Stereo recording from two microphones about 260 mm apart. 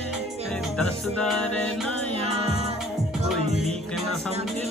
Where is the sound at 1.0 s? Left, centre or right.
Centre.